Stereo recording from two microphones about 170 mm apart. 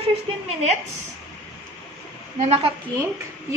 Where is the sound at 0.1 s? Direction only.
40° right (ahead or behind).